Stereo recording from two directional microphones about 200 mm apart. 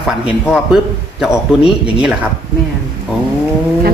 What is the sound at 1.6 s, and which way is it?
Speech, 5° right (ahead or behind).